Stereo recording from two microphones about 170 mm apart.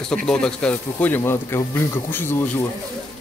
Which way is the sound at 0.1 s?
5° left (ahead or behind).